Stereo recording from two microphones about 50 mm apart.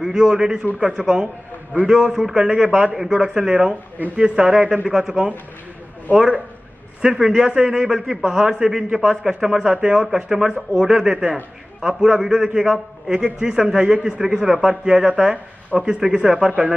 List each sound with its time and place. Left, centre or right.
0.0 s a man's voice: centre
1.9 s a man's voice: centre
4.8 s a man's voice: centre
6.1 s a man's voice: right
16.4 s speech: right